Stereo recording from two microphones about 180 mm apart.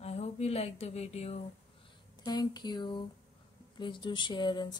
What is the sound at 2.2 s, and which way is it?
Speech, 20° left (ahead or behind).